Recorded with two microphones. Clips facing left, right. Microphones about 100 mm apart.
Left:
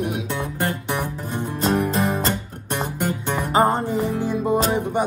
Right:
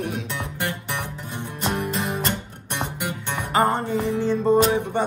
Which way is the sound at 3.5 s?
20° left (ahead or behind).